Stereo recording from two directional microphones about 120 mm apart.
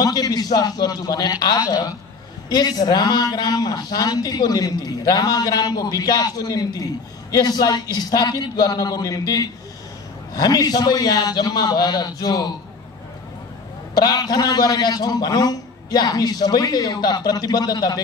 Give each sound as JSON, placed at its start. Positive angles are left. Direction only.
{"t": 0.0, "sound": "a man's voice", "side_deg": 30}
{"t": 13.9, "sound": "a man's voice", "side_deg": 35}